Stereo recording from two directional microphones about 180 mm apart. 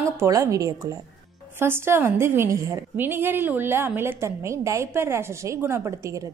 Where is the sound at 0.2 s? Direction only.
15° right (ahead or behind).